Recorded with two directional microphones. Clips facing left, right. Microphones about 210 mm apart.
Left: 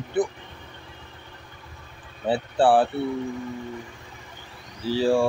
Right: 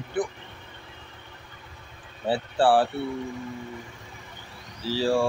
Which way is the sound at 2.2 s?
15° left (ahead or behind).